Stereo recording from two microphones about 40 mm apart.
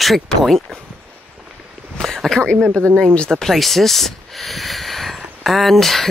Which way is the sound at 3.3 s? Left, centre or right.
Centre.